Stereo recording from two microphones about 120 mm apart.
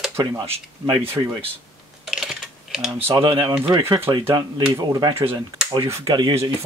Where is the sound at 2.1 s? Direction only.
Centre (ahead or behind).